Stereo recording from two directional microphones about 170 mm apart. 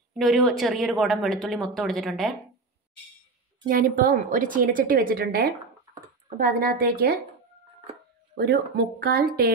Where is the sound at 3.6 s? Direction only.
55° right (ahead or behind).